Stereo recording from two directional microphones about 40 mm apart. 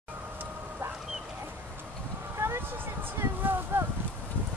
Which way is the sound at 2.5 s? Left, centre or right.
Right.